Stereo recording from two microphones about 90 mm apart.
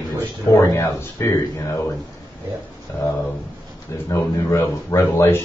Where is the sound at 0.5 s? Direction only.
35° left (ahead or behind).